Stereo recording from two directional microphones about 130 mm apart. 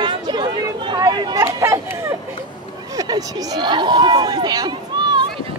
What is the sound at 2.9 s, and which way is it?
Speech, 30° right (ahead or behind).